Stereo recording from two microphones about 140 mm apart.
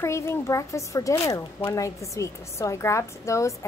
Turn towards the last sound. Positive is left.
turn(degrees=20)  # may be behind; listen again after turning